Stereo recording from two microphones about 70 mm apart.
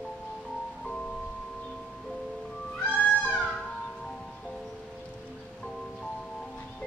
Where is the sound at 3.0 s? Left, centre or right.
Left.